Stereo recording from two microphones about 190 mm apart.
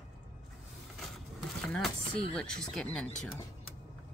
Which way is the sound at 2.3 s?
5° left (ahead or behind).